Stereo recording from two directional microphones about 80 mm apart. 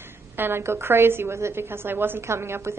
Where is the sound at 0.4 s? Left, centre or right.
Right.